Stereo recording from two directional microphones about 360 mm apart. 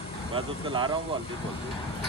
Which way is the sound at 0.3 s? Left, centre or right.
Centre.